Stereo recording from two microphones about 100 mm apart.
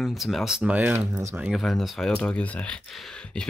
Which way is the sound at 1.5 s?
Centre (ahead or behind).